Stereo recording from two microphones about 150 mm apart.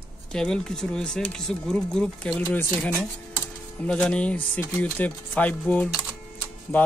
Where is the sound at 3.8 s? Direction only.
5° left (ahead or behind).